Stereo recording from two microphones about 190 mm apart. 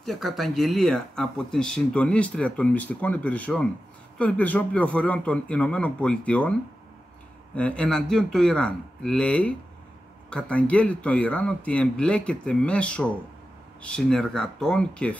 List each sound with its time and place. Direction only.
0.0 s speech: centre (ahead or behind)
7.5 s speech: 5° left (ahead or behind)